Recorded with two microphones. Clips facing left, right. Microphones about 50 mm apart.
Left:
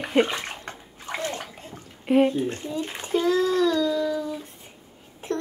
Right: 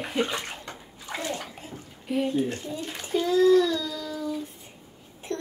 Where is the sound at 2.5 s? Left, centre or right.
Left.